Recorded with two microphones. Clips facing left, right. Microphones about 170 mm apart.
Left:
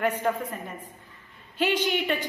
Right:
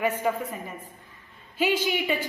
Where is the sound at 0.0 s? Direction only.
10° right (ahead or behind).